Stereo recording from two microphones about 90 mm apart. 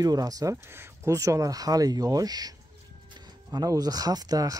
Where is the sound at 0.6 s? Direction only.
30° right (ahead or behind); by 2.5 s 45° right (ahead or behind).